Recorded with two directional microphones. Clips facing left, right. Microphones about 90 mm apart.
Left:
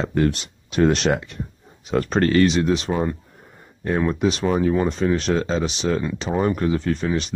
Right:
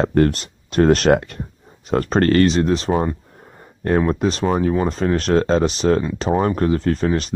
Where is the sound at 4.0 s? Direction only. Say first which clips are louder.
Right 1 dB; 40° right (ahead or behind).